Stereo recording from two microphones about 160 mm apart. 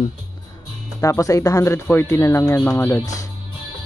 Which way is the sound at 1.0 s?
20° left (ahead or behind).